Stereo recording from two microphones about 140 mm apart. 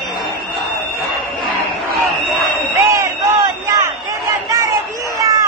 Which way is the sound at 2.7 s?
20° right (ahead or behind).